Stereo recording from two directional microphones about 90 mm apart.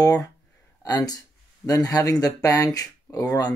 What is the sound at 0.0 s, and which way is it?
Speech, 40° left (ahead or behind).